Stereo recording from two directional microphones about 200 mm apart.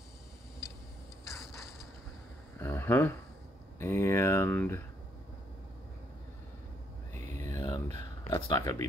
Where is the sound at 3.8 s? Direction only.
10° left (ahead or behind).